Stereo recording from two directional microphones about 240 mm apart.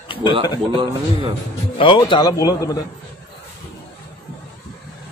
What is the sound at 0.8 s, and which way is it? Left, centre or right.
Speech, right.